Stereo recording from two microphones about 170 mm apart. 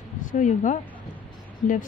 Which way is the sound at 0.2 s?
50° left (ahead or behind).